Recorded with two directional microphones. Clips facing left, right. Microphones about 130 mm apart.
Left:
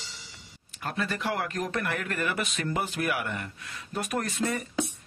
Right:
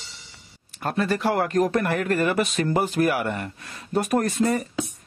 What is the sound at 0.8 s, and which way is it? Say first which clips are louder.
Speech: right 8 dB; 40° right (ahead or behind).